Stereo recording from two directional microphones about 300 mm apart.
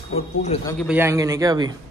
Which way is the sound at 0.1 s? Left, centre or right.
Left.